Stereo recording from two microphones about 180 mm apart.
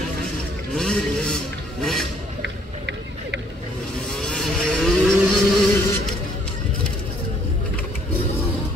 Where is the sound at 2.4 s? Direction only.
80° right.